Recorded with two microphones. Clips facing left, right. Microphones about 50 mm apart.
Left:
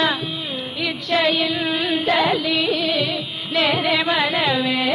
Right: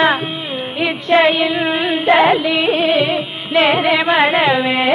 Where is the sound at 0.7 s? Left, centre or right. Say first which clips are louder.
Right 8 dB; right.